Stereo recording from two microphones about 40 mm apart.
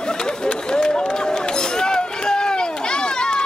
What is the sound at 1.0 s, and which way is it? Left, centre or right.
Run, centre.